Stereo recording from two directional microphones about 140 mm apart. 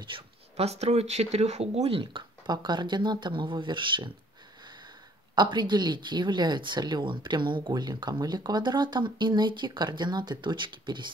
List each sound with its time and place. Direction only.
0.0 s speech: 40° right (ahead or behind)
5.3 s speech: 30° right (ahead or behind)